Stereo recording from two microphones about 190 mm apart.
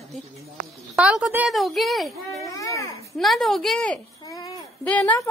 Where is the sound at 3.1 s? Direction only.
Centre (ahead or behind).